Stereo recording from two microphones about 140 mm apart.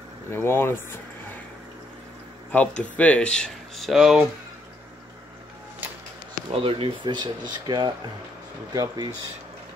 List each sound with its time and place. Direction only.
0.3 s speech: 15° left (ahead or behind)
2.5 s speech: 10° left (ahead or behind)
6.5 s speech: 40° right (ahead or behind)